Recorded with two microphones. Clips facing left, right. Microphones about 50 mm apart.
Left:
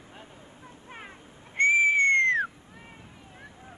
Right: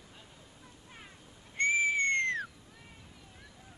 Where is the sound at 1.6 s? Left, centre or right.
Left.